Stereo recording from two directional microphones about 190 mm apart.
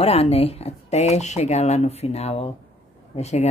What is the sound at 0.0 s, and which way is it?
Speech, 30° left (ahead or behind).